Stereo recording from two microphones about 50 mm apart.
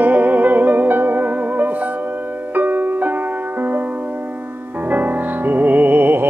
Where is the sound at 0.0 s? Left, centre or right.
Right.